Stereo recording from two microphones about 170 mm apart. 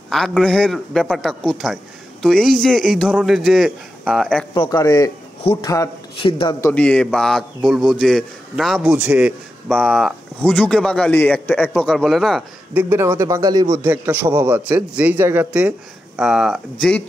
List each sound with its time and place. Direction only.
0.1 s a man's voice: centre (ahead or behind)
4.6 s speech: 20° left (ahead or behind)
6.6 s a man's voice: 5° left (ahead or behind)
9.7 s a man's voice: 5° left (ahead or behind)
12.9 s speech: 15° right (ahead or behind)
13.8 s a man's voice: 10° right (ahead or behind)